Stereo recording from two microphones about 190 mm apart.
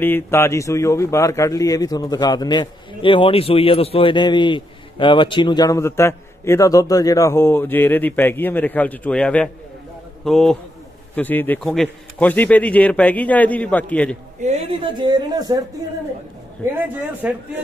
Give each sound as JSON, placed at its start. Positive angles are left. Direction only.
{"t": 0.0, "sound": "a man's voice", "side_deg": 10}
{"t": 14.4, "sound": "a man's voice", "side_deg": -35}
{"t": 16.8, "sound": "speech", "side_deg": -10}